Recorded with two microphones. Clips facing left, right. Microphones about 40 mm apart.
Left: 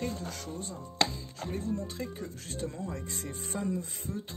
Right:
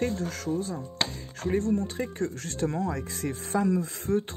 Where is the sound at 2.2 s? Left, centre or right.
Right.